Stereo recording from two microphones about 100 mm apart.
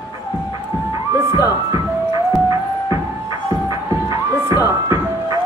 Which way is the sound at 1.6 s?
40° right (ahead or behind).